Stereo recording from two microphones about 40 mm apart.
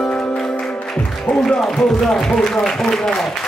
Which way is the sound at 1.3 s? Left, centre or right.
Left.